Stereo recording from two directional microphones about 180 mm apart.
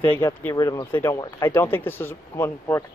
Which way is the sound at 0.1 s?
10° left (ahead or behind).